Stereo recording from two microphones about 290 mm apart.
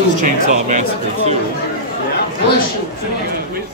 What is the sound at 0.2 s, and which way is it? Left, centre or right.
Speech, right.